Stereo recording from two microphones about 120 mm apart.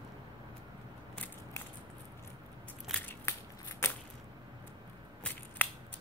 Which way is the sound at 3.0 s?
15° left (ahead or behind).